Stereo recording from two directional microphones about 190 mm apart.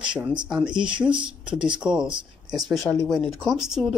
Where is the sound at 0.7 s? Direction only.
25° right (ahead or behind).